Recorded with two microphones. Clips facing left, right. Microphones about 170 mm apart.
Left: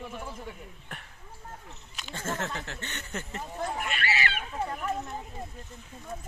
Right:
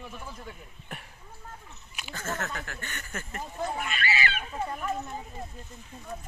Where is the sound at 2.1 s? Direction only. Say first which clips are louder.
Left 1 dB; 30° left (ahead or behind).